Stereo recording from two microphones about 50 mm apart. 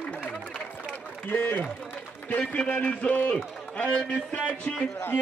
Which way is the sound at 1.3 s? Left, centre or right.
Left.